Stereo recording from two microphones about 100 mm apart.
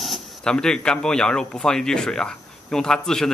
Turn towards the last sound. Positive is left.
turn(degrees=5)  # may be behind; listen again after turning